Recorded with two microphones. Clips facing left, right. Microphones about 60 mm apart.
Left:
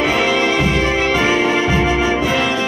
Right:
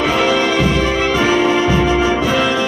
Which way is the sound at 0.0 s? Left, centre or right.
Centre.